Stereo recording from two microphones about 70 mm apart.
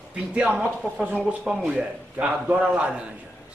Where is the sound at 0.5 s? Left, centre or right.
Centre.